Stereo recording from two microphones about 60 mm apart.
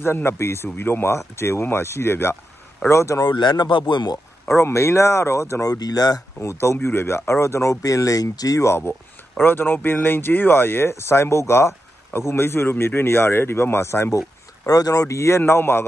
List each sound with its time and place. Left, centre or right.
0.0 s speech: left
4.6 s speech: left
5.7 s speech: left
6.6 s speech: left
8.6 s speech: left
14.7 s speech: left